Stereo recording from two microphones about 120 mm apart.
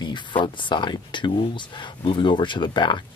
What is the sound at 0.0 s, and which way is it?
Speech, 40° left (ahead or behind).